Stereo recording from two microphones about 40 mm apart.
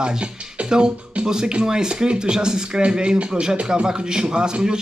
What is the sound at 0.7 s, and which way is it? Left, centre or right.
Speech, centre.